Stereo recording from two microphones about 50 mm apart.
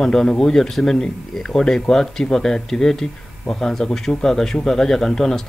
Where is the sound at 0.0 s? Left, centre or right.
Centre.